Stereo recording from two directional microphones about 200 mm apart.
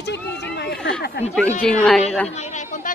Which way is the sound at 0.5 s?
55° left (ahead or behind).